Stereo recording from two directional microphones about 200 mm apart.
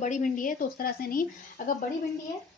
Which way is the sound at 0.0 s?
40° left (ahead or behind).